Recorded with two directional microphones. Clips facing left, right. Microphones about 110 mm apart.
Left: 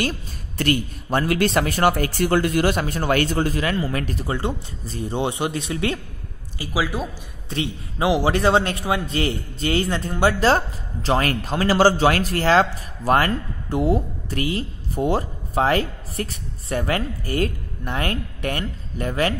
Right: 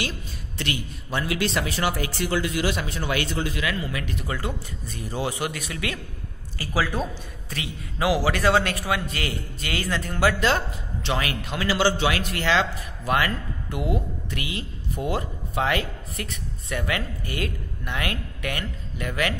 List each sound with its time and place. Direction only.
0.0 s speech: 45° left (ahead or behind); by 5.9 s 30° left (ahead or behind)
6.6 s speech: 15° left (ahead or behind)
7.4 s a man's voice: 30° left (ahead or behind)